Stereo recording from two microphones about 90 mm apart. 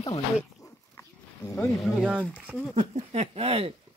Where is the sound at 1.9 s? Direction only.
10° right (ahead or behind).